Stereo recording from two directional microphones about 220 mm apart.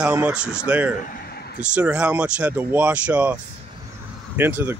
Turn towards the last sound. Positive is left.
turn(degrees=-10)  # may be behind; listen again after turning